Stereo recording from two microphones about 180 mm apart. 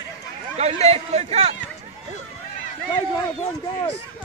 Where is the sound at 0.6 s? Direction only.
35° right (ahead or behind).